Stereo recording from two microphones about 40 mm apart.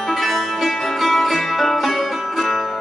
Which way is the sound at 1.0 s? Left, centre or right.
Centre.